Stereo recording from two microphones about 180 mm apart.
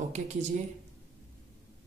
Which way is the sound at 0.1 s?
40° right (ahead or behind).